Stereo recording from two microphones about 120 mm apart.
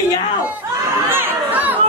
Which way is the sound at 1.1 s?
15° right (ahead or behind).